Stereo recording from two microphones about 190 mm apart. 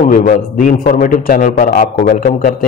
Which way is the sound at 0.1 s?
45° left (ahead or behind).